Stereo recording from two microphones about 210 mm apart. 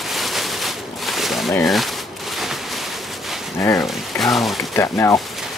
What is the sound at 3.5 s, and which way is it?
Speech, 10° left (ahead or behind).